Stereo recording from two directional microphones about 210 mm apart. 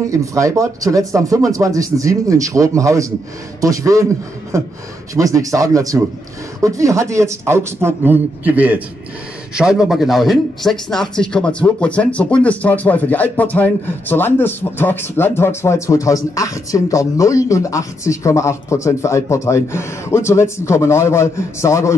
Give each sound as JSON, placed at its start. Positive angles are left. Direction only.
{"t": 0.1, "sound": "speech", "side_deg": -15}